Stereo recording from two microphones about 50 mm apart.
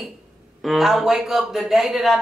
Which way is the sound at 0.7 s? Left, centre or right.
Centre.